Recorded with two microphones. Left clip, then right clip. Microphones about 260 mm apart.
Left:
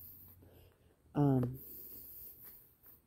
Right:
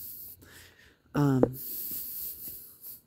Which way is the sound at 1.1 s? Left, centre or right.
Right.